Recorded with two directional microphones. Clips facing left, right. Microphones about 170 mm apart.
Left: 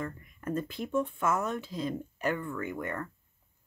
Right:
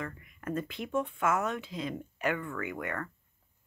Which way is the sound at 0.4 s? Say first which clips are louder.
Left 2 dB; 35° left (ahead or behind).